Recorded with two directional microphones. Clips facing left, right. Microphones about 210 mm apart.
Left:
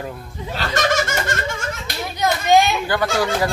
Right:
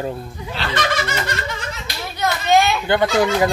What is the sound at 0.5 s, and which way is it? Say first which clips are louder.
Laughter: left 2 dB; 45° left (ahead or behind).